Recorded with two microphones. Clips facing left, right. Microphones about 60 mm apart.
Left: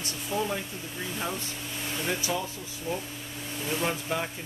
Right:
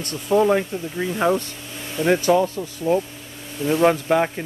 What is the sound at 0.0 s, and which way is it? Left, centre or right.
Speech, right.